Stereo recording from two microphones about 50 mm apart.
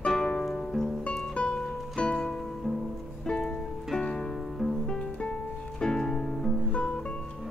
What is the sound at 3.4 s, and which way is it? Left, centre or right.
Music, centre.